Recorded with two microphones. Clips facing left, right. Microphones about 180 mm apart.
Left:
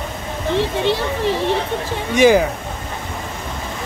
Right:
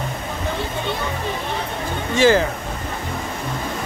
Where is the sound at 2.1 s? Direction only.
15° left (ahead or behind).